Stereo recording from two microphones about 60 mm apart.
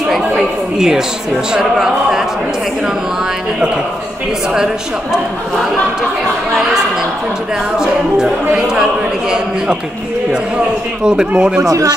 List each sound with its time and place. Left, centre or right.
0.4 s a woman's voice: centre
7.8 s speech: centre
11.1 s speech: centre